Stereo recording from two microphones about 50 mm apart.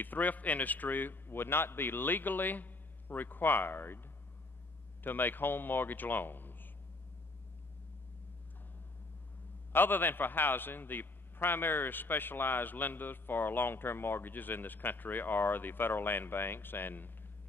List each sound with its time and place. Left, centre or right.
0.0 s a man's voice: left
5.0 s a man's voice: left
9.7 s a man's voice: left